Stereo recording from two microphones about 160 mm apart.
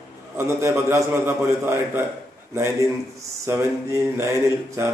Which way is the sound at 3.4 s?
15° right (ahead or behind).